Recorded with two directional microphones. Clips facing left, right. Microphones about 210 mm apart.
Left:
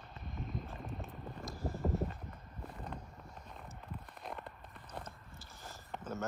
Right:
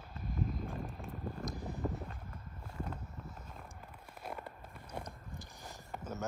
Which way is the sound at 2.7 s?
5° right (ahead or behind).